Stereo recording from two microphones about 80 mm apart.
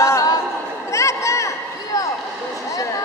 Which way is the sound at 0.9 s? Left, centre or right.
Left.